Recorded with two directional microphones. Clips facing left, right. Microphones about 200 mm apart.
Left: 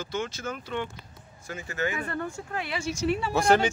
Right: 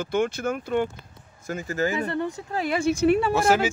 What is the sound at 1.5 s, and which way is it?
Speech, 40° right (ahead or behind).